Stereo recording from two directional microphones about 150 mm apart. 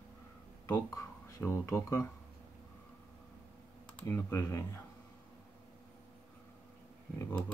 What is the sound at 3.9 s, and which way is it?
Speech, 10° left (ahead or behind).